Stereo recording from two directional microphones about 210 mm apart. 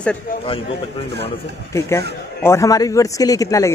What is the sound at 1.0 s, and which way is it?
Speech, 55° right (ahead or behind).